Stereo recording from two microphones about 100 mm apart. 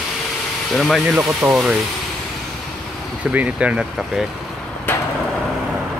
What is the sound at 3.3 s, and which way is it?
Speech, 15° right (ahead or behind).